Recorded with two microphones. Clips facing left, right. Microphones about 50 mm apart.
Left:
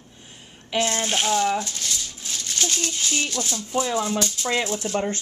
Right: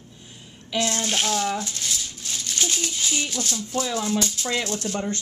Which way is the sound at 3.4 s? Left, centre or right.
Centre.